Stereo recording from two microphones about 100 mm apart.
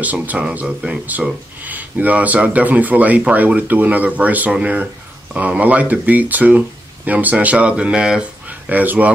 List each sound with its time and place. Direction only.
0.0 s speech: 15° right (ahead or behind)